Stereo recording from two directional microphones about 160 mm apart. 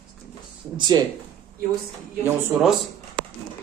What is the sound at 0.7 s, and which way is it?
Speech, 25° right (ahead or behind).